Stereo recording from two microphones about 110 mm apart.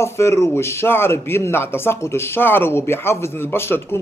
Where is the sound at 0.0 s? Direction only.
25° left (ahead or behind).